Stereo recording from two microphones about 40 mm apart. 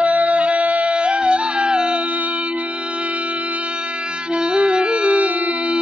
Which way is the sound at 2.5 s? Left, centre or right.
Right.